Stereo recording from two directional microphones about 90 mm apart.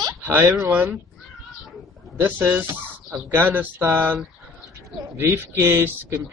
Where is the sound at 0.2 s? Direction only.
20° right (ahead or behind).